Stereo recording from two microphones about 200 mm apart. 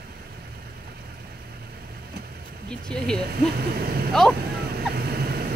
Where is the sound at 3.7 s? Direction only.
50° right (ahead or behind).